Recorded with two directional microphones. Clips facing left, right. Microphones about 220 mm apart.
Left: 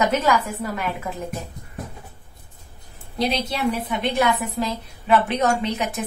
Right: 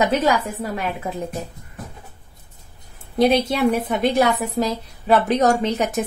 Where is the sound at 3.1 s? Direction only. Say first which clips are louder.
Right 7 dB; 50° right (ahead or behind).